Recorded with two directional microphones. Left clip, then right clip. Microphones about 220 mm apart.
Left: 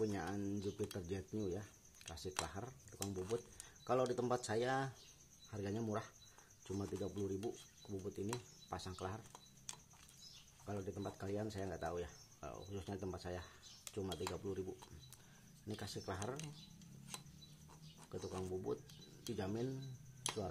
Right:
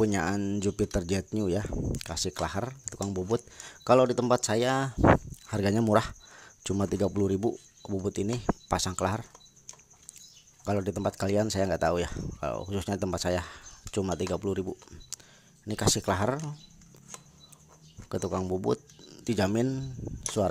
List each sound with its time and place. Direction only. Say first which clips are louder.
0.0 s speech: right 14 dB; 45° right (ahead or behind)
5.5 s speech: right 19 dB; 50° right (ahead or behind)
10.6 s speech: right 17 dB; 45° right (ahead or behind)
18.2 s speech: right 15 dB; 45° right (ahead or behind)